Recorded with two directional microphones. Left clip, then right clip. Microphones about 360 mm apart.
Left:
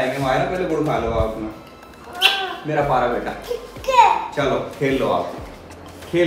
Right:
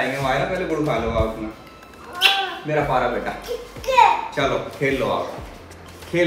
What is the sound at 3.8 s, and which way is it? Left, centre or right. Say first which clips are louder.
Children playing: left 1 dB; centre.